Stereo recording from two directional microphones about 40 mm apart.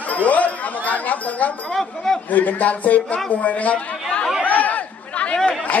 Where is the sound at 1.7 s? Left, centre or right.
Centre.